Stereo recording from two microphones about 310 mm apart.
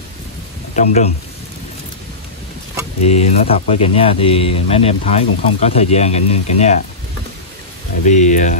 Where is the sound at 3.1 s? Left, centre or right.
Left.